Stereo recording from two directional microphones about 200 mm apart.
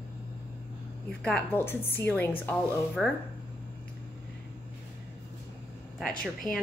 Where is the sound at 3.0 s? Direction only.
Centre (ahead or behind).